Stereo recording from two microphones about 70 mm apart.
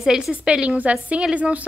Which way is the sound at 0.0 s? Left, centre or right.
Centre.